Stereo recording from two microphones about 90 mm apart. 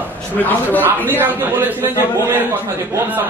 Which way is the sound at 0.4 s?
20° left (ahead or behind).